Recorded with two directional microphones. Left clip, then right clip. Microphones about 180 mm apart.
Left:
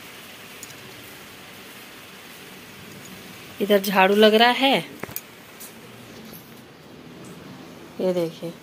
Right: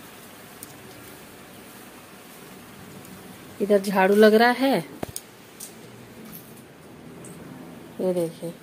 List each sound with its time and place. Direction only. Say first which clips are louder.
3.6 s speech: left 2 dB; 10° right (ahead or behind)
4.1 s speech: right 1 dB; 25° right (ahead or behind)
8.0 s a woman's voice: left 2 dB; 5° right (ahead or behind)